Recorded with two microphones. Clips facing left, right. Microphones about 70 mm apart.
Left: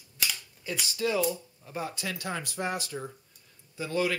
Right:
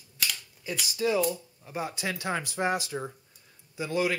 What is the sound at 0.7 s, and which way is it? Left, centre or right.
Speech, centre.